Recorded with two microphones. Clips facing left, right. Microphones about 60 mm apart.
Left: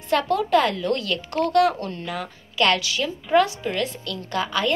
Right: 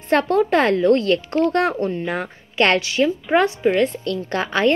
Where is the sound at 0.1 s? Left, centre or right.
Right.